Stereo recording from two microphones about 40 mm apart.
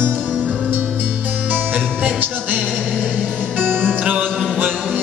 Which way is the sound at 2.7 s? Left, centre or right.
Centre.